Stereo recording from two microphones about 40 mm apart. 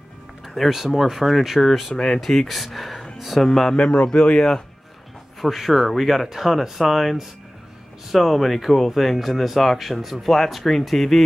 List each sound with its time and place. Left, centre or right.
0.7 s speech: centre
3.4 s speech: centre
3.7 s speech: left
5.4 s speech: centre